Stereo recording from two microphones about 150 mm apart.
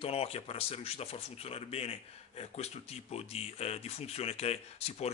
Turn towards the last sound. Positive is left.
turn(degrees=45)  # may be behind; listen again after turning